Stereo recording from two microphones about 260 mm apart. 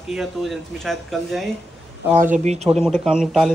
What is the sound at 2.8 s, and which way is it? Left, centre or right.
Speech, centre.